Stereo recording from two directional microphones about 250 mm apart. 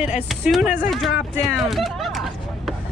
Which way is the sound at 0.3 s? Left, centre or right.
Centre.